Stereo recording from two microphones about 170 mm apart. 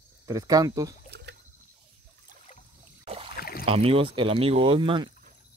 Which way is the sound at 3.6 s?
35° right (ahead or behind).